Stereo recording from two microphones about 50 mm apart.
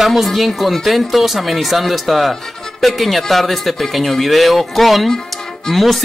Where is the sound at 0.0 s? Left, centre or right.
Centre.